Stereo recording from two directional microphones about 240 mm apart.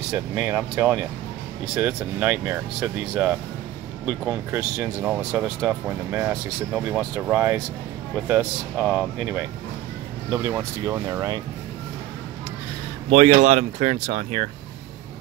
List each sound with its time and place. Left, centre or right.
0.1 s speech: centre
13.1 s speech: right